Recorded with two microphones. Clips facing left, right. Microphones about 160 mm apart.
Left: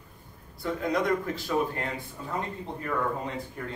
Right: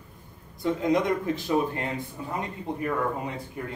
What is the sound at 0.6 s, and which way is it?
A man's voice, 20° right (ahead or behind).